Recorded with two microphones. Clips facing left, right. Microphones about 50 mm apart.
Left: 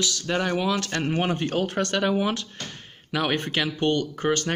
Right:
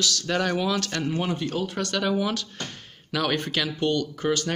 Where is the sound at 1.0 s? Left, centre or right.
Left.